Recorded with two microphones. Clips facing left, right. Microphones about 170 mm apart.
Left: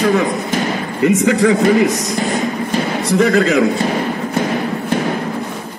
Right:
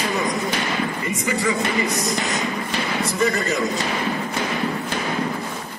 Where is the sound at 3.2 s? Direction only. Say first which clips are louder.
Left 10 dB; 90° left.